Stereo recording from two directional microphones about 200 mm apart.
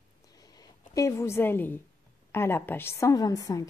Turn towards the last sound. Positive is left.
turn(degrees=15)  # may be behind; listen again after turning